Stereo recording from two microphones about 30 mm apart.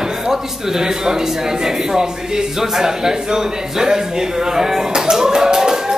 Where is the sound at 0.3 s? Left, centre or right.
Centre.